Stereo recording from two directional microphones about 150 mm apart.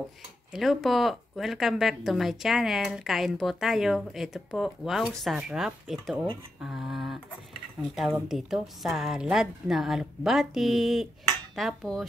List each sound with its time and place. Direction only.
0.5 s speech: centre (ahead or behind)